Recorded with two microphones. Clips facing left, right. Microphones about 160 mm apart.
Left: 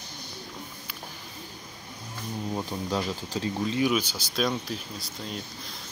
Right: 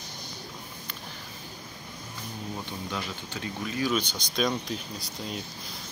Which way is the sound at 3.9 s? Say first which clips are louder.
Left 1 dB; 5° left (ahead or behind).